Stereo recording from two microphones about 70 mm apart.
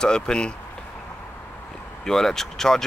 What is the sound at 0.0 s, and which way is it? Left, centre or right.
Speech, centre.